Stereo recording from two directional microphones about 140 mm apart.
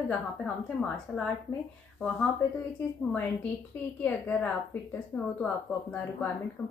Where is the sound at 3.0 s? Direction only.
10° left (ahead or behind).